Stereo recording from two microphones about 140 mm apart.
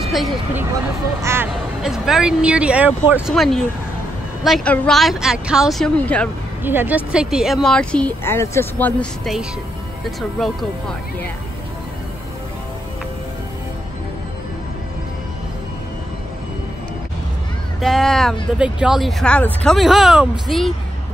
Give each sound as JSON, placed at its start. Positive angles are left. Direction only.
{"t": 0.0, "sound": "a sound", "side_deg": 0}
{"t": 1.2, "sound": "speech", "side_deg": -15}
{"t": 1.8, "sound": "speech", "side_deg": -5}
{"t": 3.3, "sound": "speech", "side_deg": 0}
{"t": 5.9, "sound": "speech", "side_deg": 10}
{"t": 6.6, "sound": "speech", "side_deg": -15}
{"t": 17.7, "sound": "speech", "side_deg": 0}